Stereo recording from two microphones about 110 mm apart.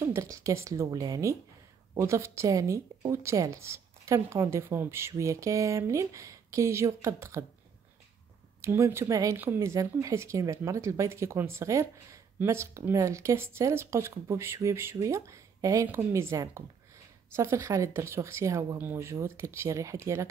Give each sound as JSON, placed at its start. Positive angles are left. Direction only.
{"t": 0.0, "sound": "speech", "side_deg": -30}
{"t": 8.5, "sound": "speech", "side_deg": -25}